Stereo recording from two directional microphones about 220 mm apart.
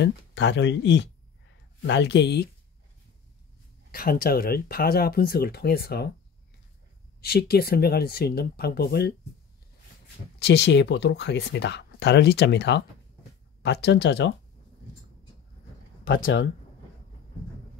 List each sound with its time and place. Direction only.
0.0 s speech: 55° left (ahead or behind)
3.9 s speech: 40° left (ahead or behind)
7.2 s speech: 45° left (ahead or behind)
10.4 s speech: 50° left (ahead or behind)